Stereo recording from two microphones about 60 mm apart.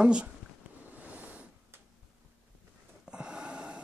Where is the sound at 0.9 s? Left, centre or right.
Right.